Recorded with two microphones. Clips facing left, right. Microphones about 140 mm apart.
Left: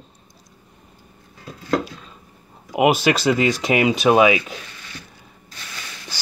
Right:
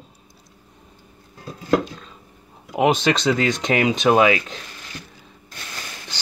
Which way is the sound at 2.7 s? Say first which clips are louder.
Left 1 dB; 5° left (ahead or behind).